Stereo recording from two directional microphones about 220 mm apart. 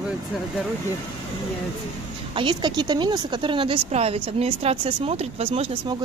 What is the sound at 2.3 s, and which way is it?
Speech, 20° right (ahead or behind).